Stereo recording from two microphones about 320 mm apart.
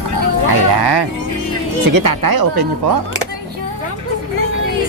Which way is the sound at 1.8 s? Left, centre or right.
Right.